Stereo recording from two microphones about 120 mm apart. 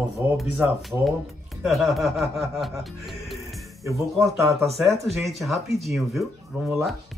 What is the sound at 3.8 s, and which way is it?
Speech, 25° right (ahead or behind).